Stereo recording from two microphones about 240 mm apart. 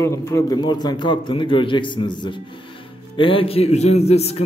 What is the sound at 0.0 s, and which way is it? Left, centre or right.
A man's voice, centre.